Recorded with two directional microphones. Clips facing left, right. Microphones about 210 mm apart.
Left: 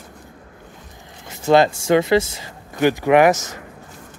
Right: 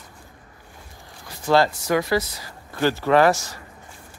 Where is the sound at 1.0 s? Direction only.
20° left (ahead or behind).